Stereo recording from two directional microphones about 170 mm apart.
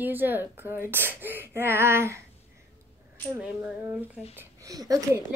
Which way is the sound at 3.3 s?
5° right (ahead or behind).